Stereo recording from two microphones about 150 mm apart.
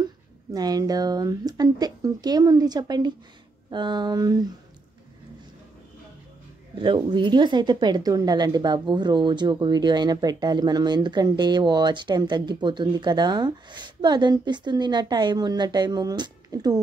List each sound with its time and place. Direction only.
0.0 s speech: 25° right (ahead or behind)
6.8 s speech: 35° right (ahead or behind)